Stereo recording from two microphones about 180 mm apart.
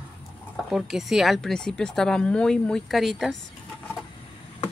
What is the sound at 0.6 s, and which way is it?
A woman's voice, centre (ahead or behind).